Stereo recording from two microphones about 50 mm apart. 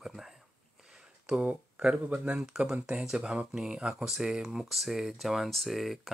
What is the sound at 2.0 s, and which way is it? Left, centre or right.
Speech, right.